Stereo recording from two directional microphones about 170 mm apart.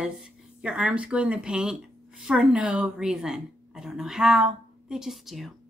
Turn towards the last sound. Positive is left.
turn(degrees=0)  # may be behind; listen again after turning